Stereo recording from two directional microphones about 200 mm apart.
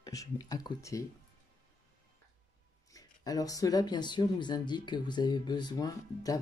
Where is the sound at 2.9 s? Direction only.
15° left (ahead or behind).